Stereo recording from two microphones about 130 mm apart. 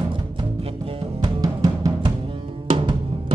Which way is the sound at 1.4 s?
30° right (ahead or behind).